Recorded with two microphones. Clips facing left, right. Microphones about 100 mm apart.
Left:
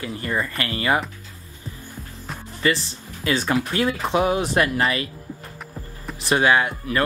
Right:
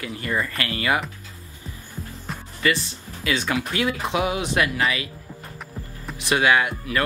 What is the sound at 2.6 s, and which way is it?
Speech, 35° left (ahead or behind).